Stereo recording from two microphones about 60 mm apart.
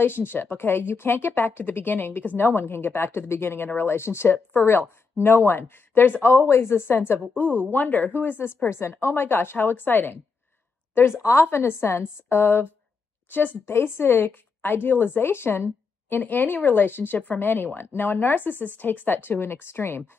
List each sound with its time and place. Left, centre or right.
0.0 s speech: left
11.4 s a woman's voice: left
13.3 s speech: left
13.7 s a woman's voice: left